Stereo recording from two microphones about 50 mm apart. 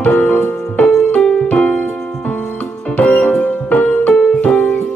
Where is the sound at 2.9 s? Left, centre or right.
Left.